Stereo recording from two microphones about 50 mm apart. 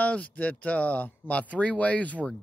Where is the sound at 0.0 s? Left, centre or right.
Left.